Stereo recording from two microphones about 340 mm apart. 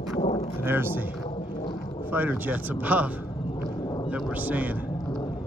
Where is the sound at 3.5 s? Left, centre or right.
Centre.